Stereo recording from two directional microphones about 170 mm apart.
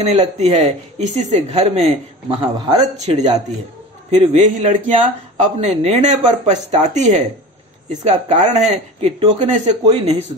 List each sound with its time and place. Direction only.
0.0 s speech: 40° right (ahead or behind)
4.1 s speech: 40° right (ahead or behind)